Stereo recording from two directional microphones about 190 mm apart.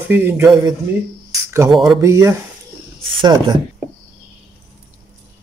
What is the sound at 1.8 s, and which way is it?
Speech, 15° right (ahead or behind).